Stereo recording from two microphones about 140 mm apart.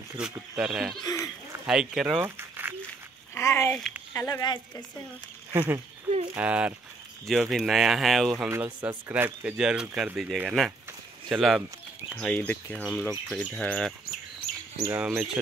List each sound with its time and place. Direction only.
0.2 s speech: 5° right (ahead or behind)
1.0 s a sound: 25° left (ahead or behind)
1.7 s speech: 5° right (ahead or behind)
2.2 s a sound: 15° right (ahead or behind)
3.3 s a sound: 20° left (ahead or behind)
4.1 s speech: 15° left (ahead or behind)
4.4 s a woman's voice: 30° left (ahead or behind)
5.5 s speech: 20° right (ahead or behind); by 8.5 s centre (ahead or behind)
8.5 s speech: 15° right (ahead or behind); by 13.9 s 5° left (ahead or behind)
14.8 s speech: 10° right (ahead or behind)